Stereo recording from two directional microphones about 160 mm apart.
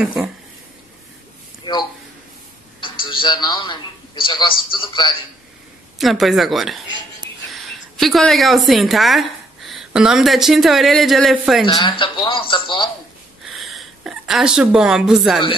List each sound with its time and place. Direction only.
0.0 s speech: 5° right (ahead or behind)
1.6 s a sound: 30° left (ahead or behind)
2.8 s a man's voice: 30° left (ahead or behind)
5.9 s a woman's voice: centre (ahead or behind)
8.0 s a woman's voice: centre (ahead or behind)
11.6 s speech: 30° left (ahead or behind)
13.5 s a sound: centre (ahead or behind)